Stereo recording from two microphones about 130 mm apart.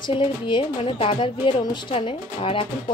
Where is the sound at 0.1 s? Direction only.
45° left (ahead or behind).